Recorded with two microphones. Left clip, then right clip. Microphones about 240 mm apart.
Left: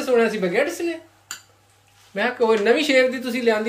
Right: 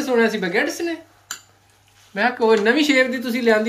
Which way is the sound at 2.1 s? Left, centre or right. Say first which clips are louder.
Right 2 dB; centre.